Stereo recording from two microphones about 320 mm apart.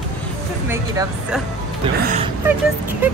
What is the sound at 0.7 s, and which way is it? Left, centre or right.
Speech, centre.